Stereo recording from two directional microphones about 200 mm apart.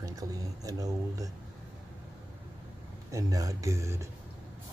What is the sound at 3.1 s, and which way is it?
Speech, 15° right (ahead or behind).